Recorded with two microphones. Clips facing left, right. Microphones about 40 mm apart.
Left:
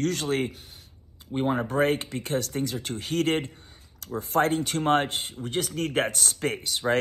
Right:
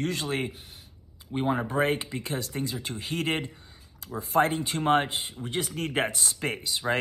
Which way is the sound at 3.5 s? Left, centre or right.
Left.